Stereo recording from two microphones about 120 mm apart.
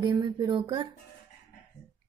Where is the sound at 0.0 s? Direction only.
40° right (ahead or behind).